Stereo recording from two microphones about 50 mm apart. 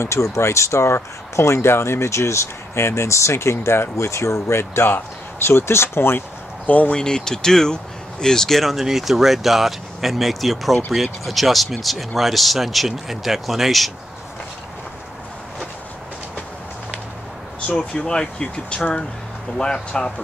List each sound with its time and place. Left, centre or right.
0.0 s speech: left
4.8 s speech: left
6.6 s speech: left
6.9 s speech: centre
17.6 s speech: centre